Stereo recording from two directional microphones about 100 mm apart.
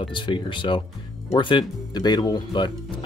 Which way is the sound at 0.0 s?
55° left (ahead or behind).